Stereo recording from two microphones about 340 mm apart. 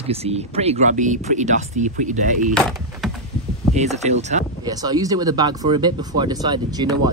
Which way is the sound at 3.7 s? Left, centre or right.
Centre.